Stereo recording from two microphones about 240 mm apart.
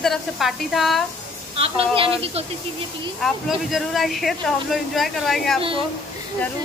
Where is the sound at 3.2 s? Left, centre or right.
Centre.